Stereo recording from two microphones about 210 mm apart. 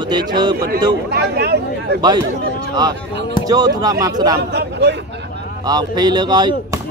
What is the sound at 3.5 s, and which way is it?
Speech, 20° right (ahead or behind).